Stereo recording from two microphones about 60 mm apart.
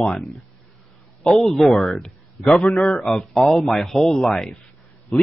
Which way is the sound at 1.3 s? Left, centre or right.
Centre.